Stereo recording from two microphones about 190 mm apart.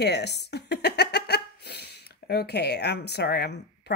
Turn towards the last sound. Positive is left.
turn(degrees=60)  # may be behind; listen again after turning